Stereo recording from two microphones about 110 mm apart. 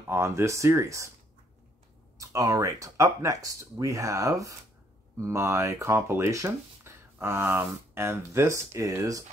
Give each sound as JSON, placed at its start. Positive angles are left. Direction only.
{"t": 0.0, "sound": "speech", "side_deg": -25}
{"t": 2.1, "sound": "speech", "side_deg": -30}